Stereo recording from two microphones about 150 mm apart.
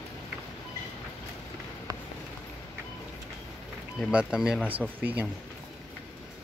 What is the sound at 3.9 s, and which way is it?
Speech, 5° right (ahead or behind).